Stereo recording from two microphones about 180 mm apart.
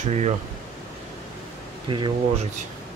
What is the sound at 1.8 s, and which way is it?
Speech, 25° right (ahead or behind).